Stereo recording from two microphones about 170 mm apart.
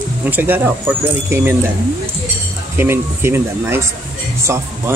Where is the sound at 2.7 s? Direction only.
15° right (ahead or behind).